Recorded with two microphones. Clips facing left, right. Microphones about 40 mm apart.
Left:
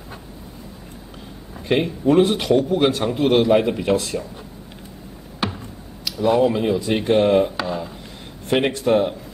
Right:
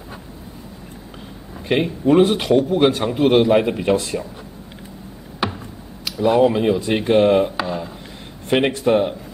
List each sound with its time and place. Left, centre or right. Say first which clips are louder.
1.7 s a man's voice: right 1 dB; centre
6.0 s a man's voice: right 2 dB; centre